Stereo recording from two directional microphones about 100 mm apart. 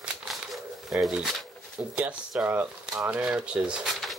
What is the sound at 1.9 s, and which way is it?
Speech, 10° right (ahead or behind).